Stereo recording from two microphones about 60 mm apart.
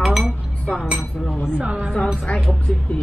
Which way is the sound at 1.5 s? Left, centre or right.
Centre.